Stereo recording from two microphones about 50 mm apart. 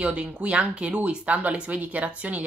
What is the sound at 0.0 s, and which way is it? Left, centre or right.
Speech, right.